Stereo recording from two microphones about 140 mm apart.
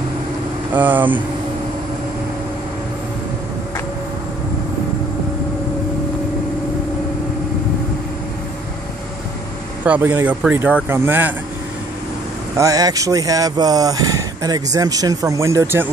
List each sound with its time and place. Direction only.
0.7 s speech: 10° right (ahead or behind)
9.8 s speech: 10° right (ahead or behind)
12.5 s speech: 25° right (ahead or behind)